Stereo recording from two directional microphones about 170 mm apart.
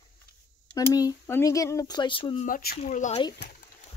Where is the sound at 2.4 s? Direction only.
55° left (ahead or behind).